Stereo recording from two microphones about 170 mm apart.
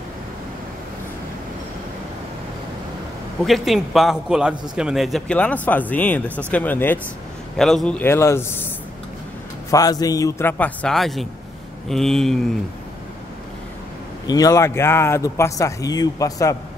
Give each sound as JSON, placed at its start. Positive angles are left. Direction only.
{"t": 3.4, "sound": "a man's voice", "side_deg": 0}
{"t": 9.7, "sound": "speech", "side_deg": 20}
{"t": 10.6, "sound": "a man's voice", "side_deg": 5}
{"t": 14.2, "sound": "speech", "side_deg": 20}